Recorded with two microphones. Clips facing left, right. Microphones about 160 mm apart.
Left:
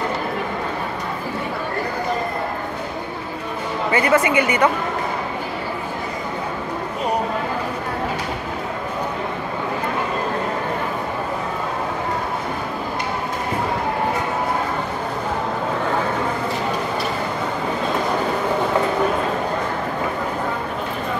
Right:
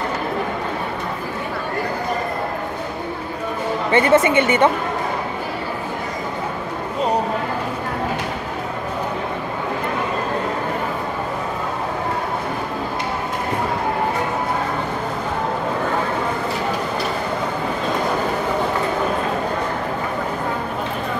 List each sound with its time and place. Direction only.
3.9 s a woman's voice: 25° right (ahead or behind)